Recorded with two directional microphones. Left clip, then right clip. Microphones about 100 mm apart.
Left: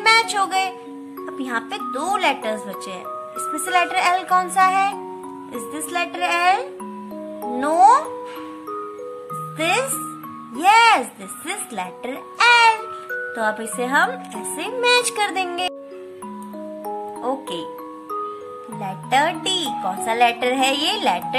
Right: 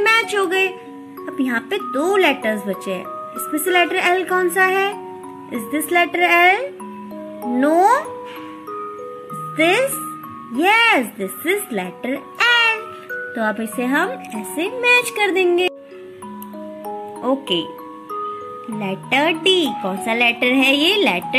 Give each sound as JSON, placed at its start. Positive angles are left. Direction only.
{"t": 0.0, "sound": "music", "side_deg": -10}
{"t": 1.2, "sound": "speech", "side_deg": -10}
{"t": 10.5, "sound": "speech", "side_deg": -15}
{"t": 11.1, "sound": "a child's voice", "side_deg": 0}
{"t": 12.4, "sound": "music", "side_deg": -10}
{"t": 13.1, "sound": "a child's voice", "side_deg": -10}
{"t": 17.2, "sound": "speech", "side_deg": -10}
{"t": 18.8, "sound": "speech", "side_deg": -15}